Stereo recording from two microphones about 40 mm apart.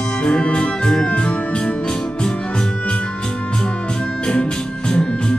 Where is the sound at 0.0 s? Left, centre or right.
Left.